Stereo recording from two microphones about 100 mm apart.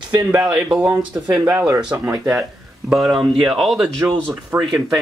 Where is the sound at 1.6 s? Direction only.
25° right (ahead or behind).